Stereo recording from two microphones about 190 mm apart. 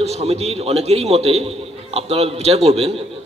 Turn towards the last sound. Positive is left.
turn(degrees=-30)  # may be behind; listen again after turning